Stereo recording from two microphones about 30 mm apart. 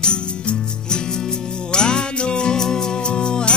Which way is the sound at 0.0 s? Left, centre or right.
Left.